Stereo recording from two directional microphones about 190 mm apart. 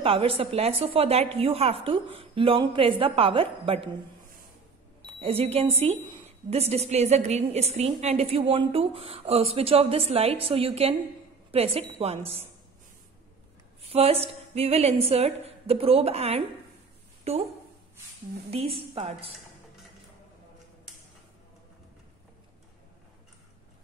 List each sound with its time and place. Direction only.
0.0 s a woman's voice: 30° right (ahead or behind)
5.0 s a woman's voice: 30° right (ahead or behind)
13.8 s a woman's voice: 30° right (ahead or behind)
18.5 s a woman's voice: 30° right (ahead or behind)